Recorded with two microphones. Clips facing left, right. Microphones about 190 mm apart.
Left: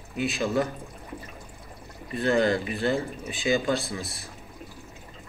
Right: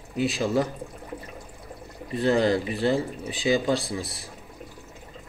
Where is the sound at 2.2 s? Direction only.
35° right (ahead or behind).